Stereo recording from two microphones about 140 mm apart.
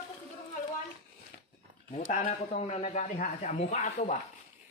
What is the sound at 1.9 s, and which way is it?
Speech, 55° left (ahead or behind).